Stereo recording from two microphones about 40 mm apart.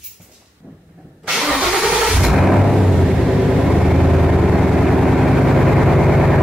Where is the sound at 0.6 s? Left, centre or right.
Right.